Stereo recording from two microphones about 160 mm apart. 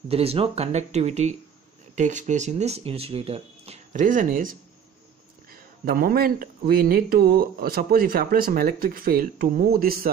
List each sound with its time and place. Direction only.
0.1 s speech: 35° right (ahead or behind)
3.9 s speech: 55° right (ahead or behind)